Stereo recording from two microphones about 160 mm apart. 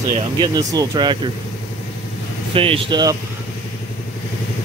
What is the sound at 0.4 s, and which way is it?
Speech, 25° right (ahead or behind).